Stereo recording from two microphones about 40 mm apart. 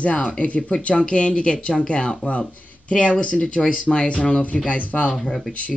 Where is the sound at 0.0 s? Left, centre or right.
Left.